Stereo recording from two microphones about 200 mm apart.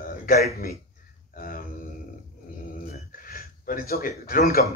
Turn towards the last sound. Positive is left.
turn(degrees=45)  # may be behind; listen again after turning